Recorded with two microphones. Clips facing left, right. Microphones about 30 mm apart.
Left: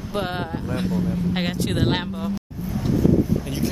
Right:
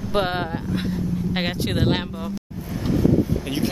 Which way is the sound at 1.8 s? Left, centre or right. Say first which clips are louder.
Even; centre.